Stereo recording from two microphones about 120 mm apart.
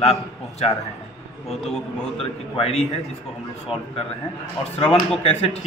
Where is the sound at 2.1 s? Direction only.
55° left (ahead or behind).